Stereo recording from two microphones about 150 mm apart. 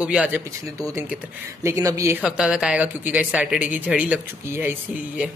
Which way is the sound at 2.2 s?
5° right (ahead or behind).